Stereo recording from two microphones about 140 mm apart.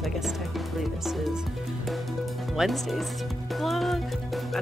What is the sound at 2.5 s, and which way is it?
Speech, centre (ahead or behind).